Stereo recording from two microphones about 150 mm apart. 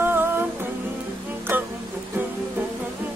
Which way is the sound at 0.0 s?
15° right (ahead or behind).